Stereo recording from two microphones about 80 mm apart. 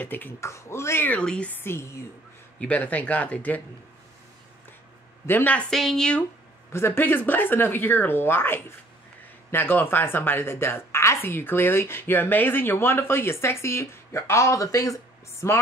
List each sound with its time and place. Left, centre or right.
0.0 s a woman's voice: left
0.4 s speech: left
1.0 s speech: centre
1.5 s a woman's voice: left
2.6 s speech: centre
5.2 s a woman's voice: left
5.7 s speech: centre
6.7 s a woman's voice: left